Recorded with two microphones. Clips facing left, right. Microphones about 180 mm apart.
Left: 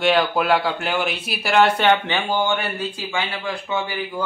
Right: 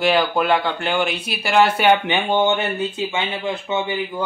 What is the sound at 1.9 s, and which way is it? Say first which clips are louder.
Speech: right 2 dB; 20° right (ahead or behind).